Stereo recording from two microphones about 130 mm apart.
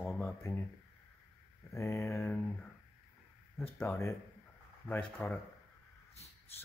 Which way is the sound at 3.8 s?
20° left (ahead or behind).